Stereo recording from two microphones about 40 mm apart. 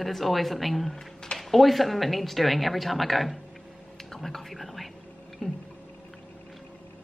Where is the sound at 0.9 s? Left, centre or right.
Centre.